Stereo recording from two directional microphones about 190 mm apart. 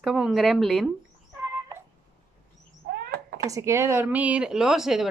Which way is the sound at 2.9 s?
55° right (ahead or behind).